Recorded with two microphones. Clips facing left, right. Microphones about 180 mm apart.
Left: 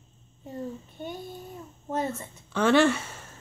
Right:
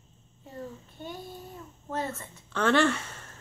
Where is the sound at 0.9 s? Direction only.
20° left (ahead or behind).